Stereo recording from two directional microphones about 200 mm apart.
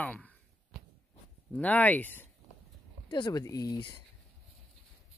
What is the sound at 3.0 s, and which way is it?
Speech, 20° left (ahead or behind).